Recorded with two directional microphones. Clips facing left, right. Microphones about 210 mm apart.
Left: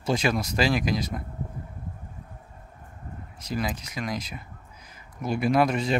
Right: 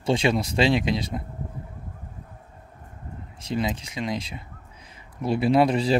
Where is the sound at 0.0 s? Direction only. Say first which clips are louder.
Right 3 dB; 30° right (ahead or behind).